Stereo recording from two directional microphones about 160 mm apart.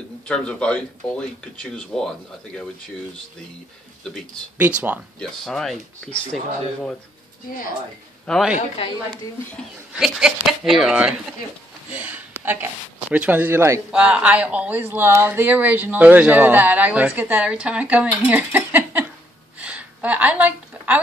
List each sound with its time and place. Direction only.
0.2 s speech: 5° left (ahead or behind)
4.6 s speech: 10° right (ahead or behind)
5.2 s speech: 5° left (ahead or behind)
8.3 s speech: centre (ahead or behind)
8.5 s speech: 35° left (ahead or behind)
9.9 s speech: 5° right (ahead or behind)
19.6 s a sound: 10° right (ahead or behind)